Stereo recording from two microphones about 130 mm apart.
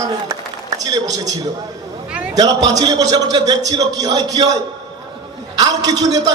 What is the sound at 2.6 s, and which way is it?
A man's voice, 30° right (ahead or behind).